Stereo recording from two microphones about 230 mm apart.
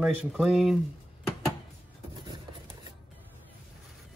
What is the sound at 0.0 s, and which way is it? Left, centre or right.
Speech, centre.